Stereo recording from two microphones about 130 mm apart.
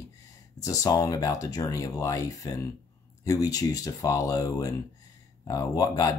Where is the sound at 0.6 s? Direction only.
25° left (ahead or behind).